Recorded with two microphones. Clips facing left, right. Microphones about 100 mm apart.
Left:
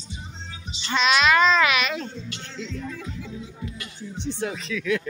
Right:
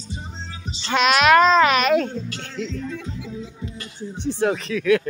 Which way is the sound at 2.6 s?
60° right (ahead or behind).